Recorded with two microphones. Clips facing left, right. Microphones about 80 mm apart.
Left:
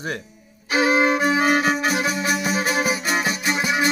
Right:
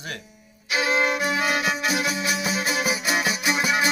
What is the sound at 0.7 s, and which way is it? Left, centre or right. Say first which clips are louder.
Violin: left 5 dB; left.